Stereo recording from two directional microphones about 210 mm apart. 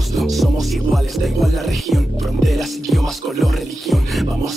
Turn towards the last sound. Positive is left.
turn(degrees=0)  # may be behind; listen again after turning